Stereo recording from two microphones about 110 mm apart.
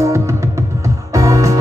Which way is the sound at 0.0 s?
25° right (ahead or behind).